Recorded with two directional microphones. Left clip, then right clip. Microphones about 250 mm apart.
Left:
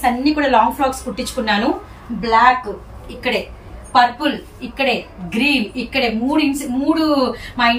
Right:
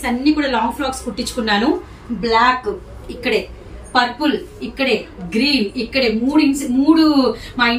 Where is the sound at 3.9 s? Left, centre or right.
Centre.